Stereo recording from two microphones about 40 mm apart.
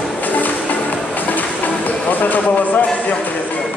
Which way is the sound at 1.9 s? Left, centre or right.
Left.